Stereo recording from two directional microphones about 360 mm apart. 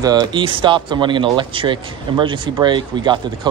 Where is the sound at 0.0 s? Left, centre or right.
Centre.